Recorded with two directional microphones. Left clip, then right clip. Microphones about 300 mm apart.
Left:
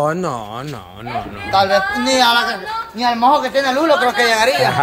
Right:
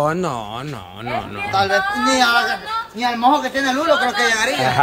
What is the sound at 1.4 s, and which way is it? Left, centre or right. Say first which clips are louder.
A woman's voice: left 3 dB; left.